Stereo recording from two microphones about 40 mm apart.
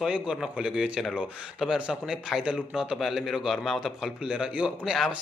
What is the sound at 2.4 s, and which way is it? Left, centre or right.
A man's voice, centre.